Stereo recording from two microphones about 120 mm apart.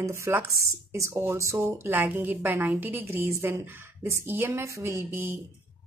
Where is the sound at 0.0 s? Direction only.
25° right (ahead or behind).